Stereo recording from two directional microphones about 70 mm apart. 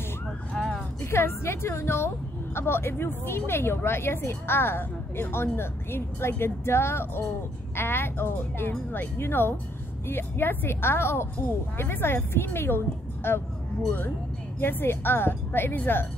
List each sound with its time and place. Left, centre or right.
0.6 s a sound: centre
1.1 s a woman's voice: left
14.6 s a woman's voice: left